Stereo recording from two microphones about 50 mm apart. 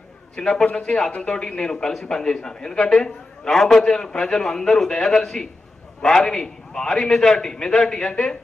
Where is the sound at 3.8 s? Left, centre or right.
Centre.